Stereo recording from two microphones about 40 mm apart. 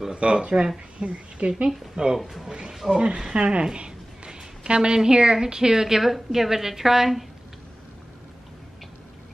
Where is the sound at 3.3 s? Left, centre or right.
Right; by 7.2 s centre.